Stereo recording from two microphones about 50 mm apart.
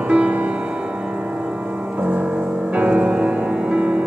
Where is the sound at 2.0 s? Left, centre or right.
Right.